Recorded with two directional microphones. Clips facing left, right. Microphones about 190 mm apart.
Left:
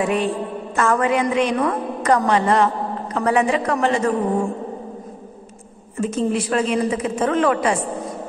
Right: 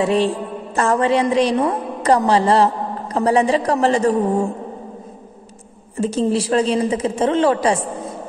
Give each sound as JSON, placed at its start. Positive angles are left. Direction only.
{"t": 0.0, "sound": "a woman's voice", "side_deg": -30}
{"t": 5.9, "sound": "a woman's voice", "side_deg": -30}